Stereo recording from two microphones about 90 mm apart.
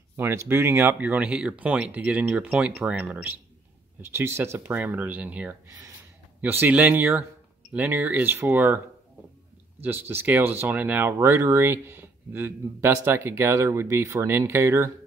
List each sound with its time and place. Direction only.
0.1 s speech: 30° right (ahead or behind)
4.0 s speech: 30° right (ahead or behind)